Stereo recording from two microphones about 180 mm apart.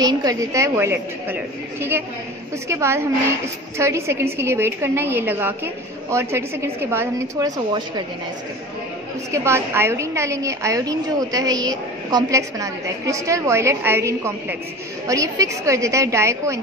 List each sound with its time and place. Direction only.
0.0 s a woman's voice: 20° right (ahead or behind)
9.3 s a woman's voice: 15° right (ahead or behind)